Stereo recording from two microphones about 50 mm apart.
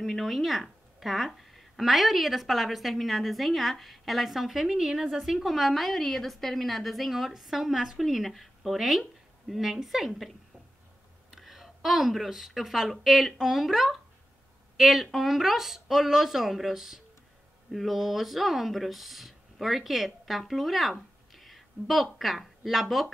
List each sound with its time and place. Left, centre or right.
0.0 s a woman's voice: centre
11.3 s a woman's voice: centre